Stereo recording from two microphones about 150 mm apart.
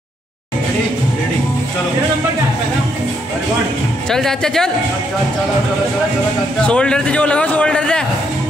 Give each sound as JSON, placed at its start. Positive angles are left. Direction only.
{"t": 4.1, "sound": "speech", "side_deg": 5}
{"t": 6.6, "sound": "a man's voice", "side_deg": 5}